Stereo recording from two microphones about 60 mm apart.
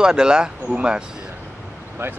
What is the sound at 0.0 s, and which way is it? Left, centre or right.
Speech, centre.